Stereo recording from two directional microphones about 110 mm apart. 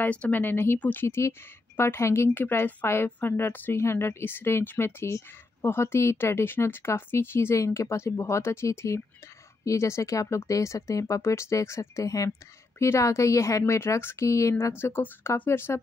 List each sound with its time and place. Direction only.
0.0 s a woman's voice: 15° left (ahead or behind)